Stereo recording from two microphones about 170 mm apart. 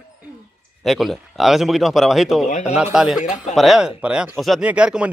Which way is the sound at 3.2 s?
45° left (ahead or behind).